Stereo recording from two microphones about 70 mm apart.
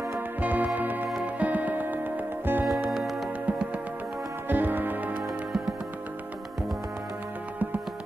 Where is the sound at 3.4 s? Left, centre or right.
Centre.